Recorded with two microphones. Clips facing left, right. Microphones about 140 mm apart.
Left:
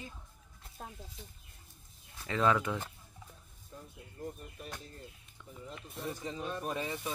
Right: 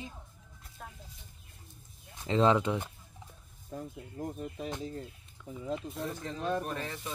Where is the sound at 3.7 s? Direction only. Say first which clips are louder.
Right 9 dB; 90° right.